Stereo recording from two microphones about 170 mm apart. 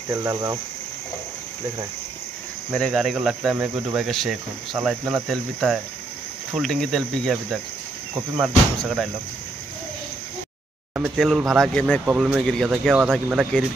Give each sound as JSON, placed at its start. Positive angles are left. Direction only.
{"t": 2.7, "sound": "speech", "side_deg": 0}
{"t": 5.3, "sound": "speech", "side_deg": 0}
{"t": 8.1, "sound": "speech", "side_deg": -10}
{"t": 11.0, "sound": "speech", "side_deg": 0}